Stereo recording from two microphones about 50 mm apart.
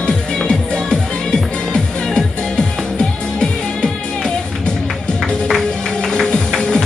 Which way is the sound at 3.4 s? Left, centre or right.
Centre.